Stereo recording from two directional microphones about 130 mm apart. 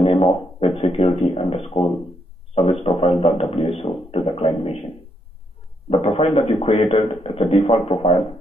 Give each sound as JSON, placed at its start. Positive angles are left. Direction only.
{"t": 0.0, "sound": "speech", "side_deg": 50}
{"t": 5.9, "sound": "speech", "side_deg": 50}